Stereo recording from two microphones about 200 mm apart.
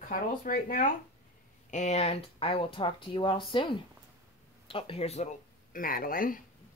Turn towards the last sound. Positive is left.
turn(degrees=45)  # may be behind; listen again after turning